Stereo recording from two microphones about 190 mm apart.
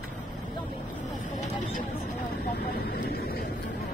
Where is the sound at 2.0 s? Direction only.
60° left (ahead or behind).